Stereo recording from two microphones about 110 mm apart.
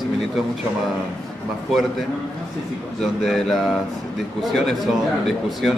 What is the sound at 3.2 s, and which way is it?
Speech, centre (ahead or behind).